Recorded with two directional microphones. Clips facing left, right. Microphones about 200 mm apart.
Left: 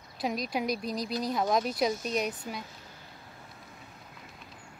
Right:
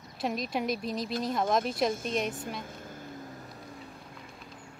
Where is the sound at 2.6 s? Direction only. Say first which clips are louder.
Right 6 dB; 50° right (ahead or behind).